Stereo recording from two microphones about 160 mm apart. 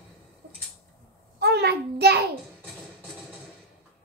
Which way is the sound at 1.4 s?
90° right.